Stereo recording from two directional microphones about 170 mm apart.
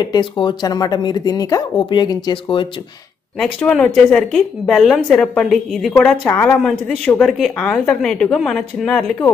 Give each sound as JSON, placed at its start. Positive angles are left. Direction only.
{"t": 0.0, "sound": "speech", "side_deg": 25}
{"t": 3.3, "sound": "a woman's voice", "side_deg": 5}